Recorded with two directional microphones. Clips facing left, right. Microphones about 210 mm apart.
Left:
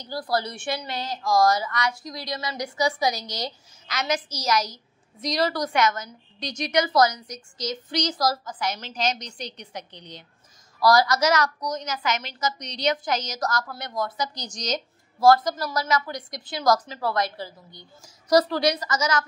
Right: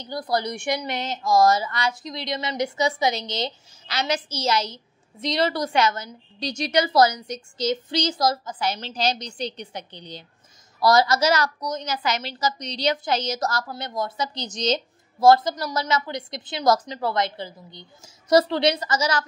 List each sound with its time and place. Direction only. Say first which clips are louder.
0.0 s a woman's voice: right 1 dB; 20° right (ahead or behind)